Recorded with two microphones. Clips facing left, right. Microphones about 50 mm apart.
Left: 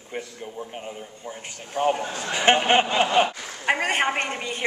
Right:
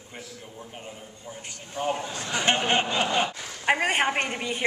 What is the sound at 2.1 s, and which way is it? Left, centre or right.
Speech, left.